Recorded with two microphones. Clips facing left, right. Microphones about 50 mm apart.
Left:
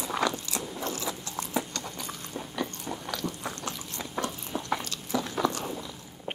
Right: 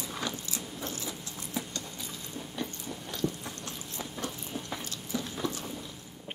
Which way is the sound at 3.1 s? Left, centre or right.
Left.